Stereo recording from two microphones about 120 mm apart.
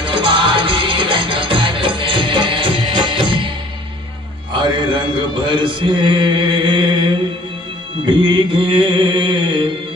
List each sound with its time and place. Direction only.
0.0 s music: 45° right (ahead or behind)
4.6 s mantra: 40° right (ahead or behind)